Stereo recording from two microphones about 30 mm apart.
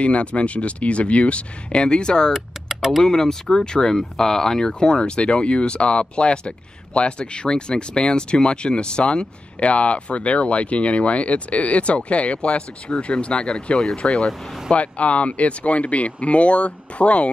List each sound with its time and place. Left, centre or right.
0.0 s speech: left
2.7 s a sound: centre
3.0 s speech: centre
5.2 s speech: left
14.0 s speech: centre
14.7 s speech: left